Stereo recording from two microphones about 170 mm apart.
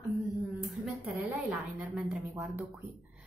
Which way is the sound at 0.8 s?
5° right (ahead or behind).